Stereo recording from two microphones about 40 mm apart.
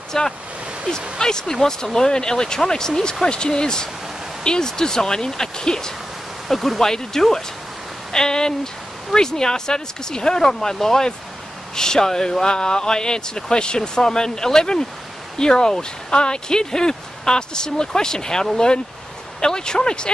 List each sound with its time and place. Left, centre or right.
0.1 s speech: centre
6.5 s speech: centre